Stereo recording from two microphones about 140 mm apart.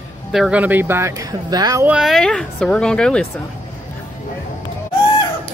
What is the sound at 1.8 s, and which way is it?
Speech, 5° right (ahead or behind).